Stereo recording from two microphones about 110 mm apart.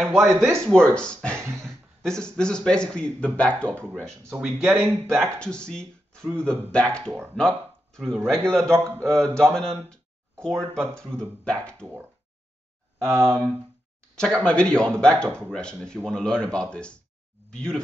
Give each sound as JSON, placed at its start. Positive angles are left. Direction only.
{"t": 0.0, "sound": "speech", "side_deg": 5}
{"t": 1.4, "sound": "a sound", "side_deg": -25}
{"t": 2.0, "sound": "speech", "side_deg": 5}
{"t": 4.4, "sound": "speech", "side_deg": -5}
{"t": 5.4, "sound": "speech", "side_deg": 10}
{"t": 8.6, "sound": "speech", "side_deg": -25}
{"t": 9.4, "sound": "speech", "side_deg": 5}
{"t": 13.0, "sound": "speech", "side_deg": -25}
{"t": 14.1, "sound": "speech", "side_deg": 10}